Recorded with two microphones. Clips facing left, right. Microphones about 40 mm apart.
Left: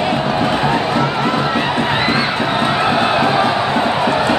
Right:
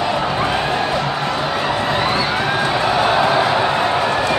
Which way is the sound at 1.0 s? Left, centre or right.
Left.